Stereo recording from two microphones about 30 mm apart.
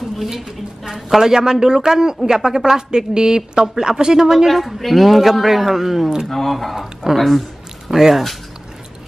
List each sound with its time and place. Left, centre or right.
0.4 s speech: centre
0.9 s a woman's voice: centre
4.5 s speech: centre
6.3 s speech: centre
7.9 s speech: centre